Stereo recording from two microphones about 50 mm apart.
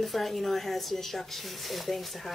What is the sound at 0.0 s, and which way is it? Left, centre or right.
A woman's voice, centre.